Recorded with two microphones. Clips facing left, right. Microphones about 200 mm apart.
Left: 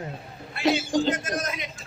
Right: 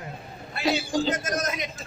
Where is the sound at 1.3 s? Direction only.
40° right (ahead or behind).